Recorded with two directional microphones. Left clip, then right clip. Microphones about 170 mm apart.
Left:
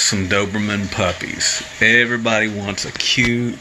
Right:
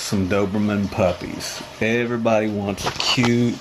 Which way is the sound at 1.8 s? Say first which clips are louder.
Left 8 dB; 10° right (ahead or behind).